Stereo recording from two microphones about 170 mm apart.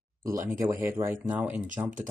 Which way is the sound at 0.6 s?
15° right (ahead or behind).